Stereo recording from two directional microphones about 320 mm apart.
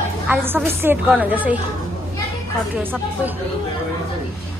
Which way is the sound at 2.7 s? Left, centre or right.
Centre.